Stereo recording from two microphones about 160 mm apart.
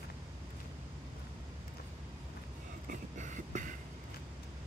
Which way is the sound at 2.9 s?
50° right (ahead or behind).